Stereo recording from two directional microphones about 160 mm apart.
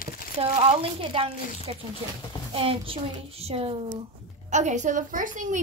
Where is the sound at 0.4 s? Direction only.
40° right (ahead or behind).